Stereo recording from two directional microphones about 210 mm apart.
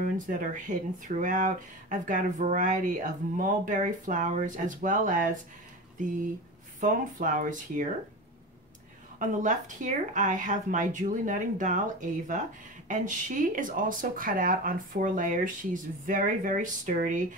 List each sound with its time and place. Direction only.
0.0 s speech: 40° right (ahead or behind)
6.8 s speech: 40° right (ahead or behind)
9.2 s speech: 35° right (ahead or behind)